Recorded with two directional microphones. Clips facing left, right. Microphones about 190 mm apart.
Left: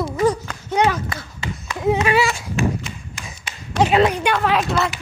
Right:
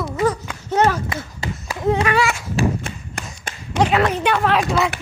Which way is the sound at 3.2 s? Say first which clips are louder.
Right 5 dB; 60° right (ahead or behind).